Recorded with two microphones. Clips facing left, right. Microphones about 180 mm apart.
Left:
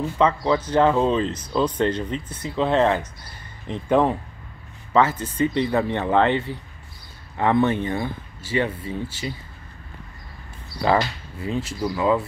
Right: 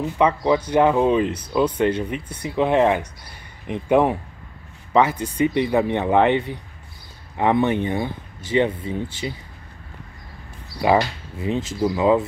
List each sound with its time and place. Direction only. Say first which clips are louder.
0.0 s speech: right 1 dB; 15° right (ahead or behind)
10.8 s speech: right 2 dB; 15° right (ahead or behind)